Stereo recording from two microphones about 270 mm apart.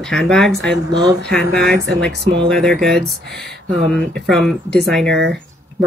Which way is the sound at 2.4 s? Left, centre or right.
Centre.